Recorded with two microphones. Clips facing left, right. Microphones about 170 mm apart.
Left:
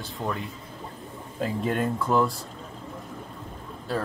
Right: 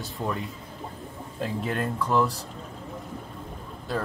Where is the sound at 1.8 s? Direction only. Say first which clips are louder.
Left 2 dB; 15° left (ahead or behind).